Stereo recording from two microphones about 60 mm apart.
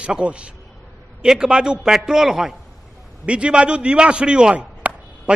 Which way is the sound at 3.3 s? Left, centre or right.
Centre.